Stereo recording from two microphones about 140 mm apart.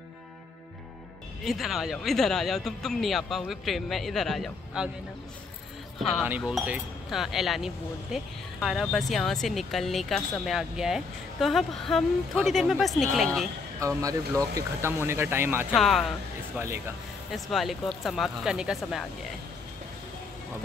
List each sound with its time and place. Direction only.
1.4 s speech: centre (ahead or behind)
6.4 s speech: centre (ahead or behind)
13.7 s speech: 25° right (ahead or behind)
15.7 s speech: centre (ahead or behind)
16.5 s speech: 15° right (ahead or behind)
17.3 s speech: centre (ahead or behind)